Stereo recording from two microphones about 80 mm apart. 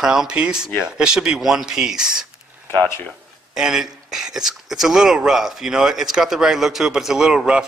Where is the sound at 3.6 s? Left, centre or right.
Centre.